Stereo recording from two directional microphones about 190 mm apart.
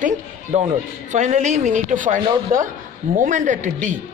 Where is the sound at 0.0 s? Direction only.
35° right (ahead or behind).